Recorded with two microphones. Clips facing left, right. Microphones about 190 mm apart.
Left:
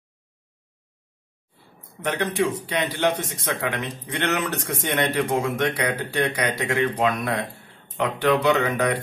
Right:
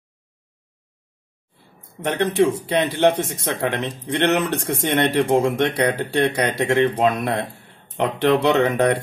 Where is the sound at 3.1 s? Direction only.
25° right (ahead or behind).